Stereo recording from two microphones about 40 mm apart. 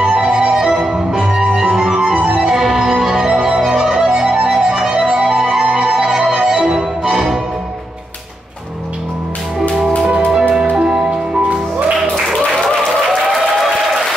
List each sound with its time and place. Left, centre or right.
0.0 s music: centre
10.0 s music: right